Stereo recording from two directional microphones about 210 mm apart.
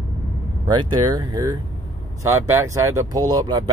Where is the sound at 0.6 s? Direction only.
20° right (ahead or behind).